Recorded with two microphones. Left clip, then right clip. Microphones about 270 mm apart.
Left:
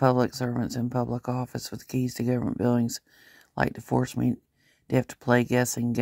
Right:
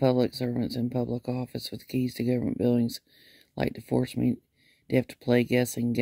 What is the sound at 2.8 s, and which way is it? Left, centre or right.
Speech, left.